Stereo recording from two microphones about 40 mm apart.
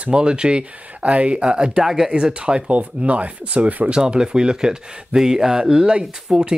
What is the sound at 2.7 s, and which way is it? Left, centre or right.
Speech, right.